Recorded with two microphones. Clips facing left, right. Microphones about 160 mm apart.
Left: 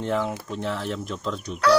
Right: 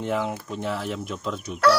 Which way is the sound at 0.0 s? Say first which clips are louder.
Left 1 dB; 5° right (ahead or behind).